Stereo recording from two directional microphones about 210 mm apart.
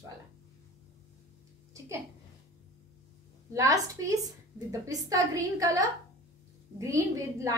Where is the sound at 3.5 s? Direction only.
15° right (ahead or behind).